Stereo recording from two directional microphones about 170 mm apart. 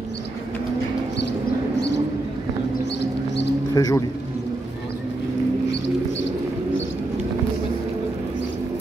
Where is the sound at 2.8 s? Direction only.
90° left.